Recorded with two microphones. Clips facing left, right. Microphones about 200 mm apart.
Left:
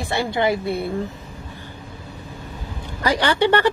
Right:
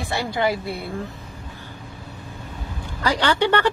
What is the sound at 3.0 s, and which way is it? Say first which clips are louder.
Speech: left 2 dB; 15° left (ahead or behind).